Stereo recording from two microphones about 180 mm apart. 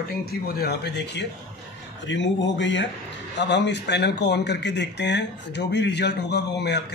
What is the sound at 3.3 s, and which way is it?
Speech, 75° left (ahead or behind).